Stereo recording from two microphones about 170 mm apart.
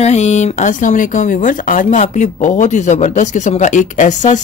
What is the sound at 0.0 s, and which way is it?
Speech, 40° left (ahead or behind).